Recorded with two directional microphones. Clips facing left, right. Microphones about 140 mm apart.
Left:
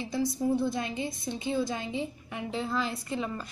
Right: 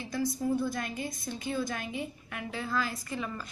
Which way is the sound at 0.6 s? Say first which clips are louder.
Left 3 dB; 25° left (ahead or behind).